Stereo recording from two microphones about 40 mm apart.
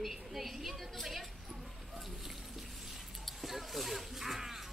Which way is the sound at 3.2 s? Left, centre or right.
Centre.